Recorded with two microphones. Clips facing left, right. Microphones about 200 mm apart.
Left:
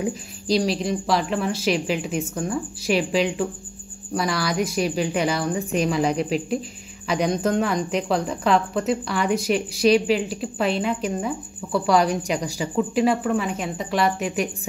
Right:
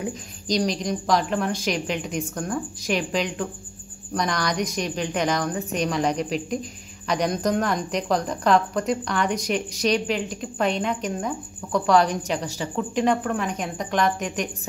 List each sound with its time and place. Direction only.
0.5 s a woman's voice: 5° left (ahead or behind)